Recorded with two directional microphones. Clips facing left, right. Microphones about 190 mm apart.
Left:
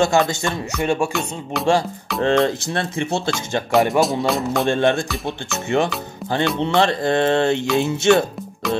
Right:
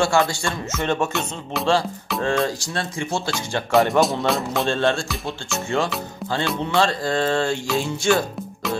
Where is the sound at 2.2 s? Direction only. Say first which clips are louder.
Left 5 dB; 20° left (ahead or behind).